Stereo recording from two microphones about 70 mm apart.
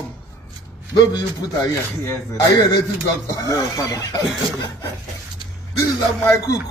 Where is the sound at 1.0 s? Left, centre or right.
Left.